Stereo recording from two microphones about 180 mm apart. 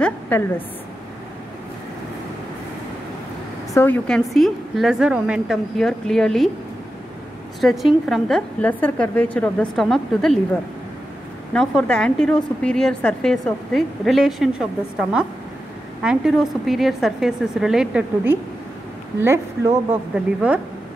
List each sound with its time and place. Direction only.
0.0 s a woman's voice: 10° left (ahead or behind)
3.7 s a woman's voice: 10° left (ahead or behind)
7.6 s a woman's voice: centre (ahead or behind)